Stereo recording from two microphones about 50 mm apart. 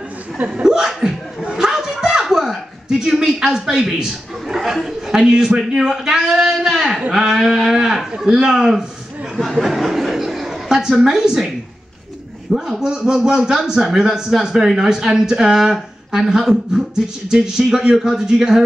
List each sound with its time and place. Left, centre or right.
0.7 s chuckle: centre
5.7 s speech: centre
9.4 s chuckle: centre
10.7 s a sound: centre
11.1 s speech: centre
12.5 s speech: centre